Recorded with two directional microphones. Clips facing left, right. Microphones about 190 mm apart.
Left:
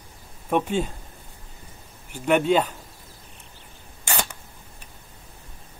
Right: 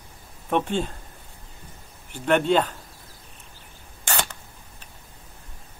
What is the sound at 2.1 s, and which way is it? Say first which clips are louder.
Speech: left 1 dB; 10° left (ahead or behind).